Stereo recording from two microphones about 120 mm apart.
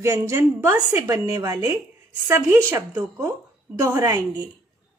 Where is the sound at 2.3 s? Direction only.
20° right (ahead or behind); by 4.5 s 35° right (ahead or behind).